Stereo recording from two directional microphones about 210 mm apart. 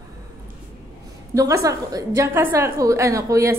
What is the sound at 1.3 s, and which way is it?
A woman's voice, 15° right (ahead or behind).